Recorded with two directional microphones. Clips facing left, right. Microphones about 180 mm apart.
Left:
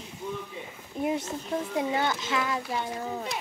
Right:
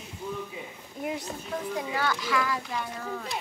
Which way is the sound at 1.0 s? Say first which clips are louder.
Left 5 dB; 25° left (ahead or behind).